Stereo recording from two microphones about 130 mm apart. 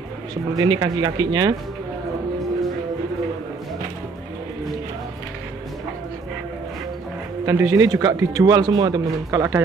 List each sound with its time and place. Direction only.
0.6 s speech: 30° right (ahead or behind)
7.4 s speech: 25° right (ahead or behind)